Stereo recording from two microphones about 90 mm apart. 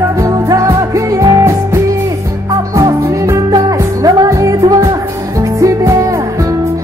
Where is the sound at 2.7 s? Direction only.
35° right (ahead or behind).